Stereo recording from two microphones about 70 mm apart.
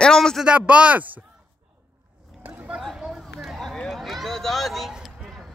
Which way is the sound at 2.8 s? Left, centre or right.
Centre.